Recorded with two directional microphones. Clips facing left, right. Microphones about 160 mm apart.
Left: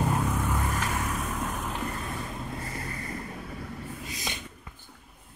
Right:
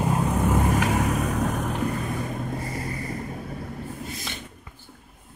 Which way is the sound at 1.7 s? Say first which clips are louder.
Right 7 dB; 45° right (ahead or behind).